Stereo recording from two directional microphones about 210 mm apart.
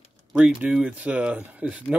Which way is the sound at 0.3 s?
5° right (ahead or behind).